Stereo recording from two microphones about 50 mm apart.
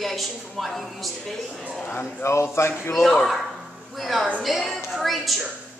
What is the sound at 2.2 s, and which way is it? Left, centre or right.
Speech, left.